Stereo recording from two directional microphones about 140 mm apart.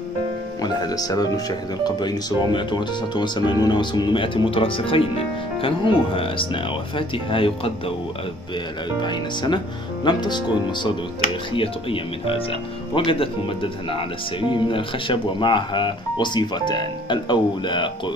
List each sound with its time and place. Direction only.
0.6 s speech: 25° left (ahead or behind)
9.0 s speech: 35° left (ahead or behind)